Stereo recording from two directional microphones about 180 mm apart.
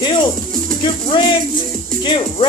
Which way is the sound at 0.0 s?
25° left (ahead or behind).